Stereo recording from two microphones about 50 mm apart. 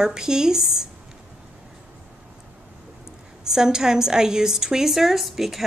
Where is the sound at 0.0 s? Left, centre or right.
Centre.